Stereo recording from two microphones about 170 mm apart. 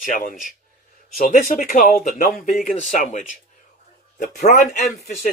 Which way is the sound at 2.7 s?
45° left (ahead or behind).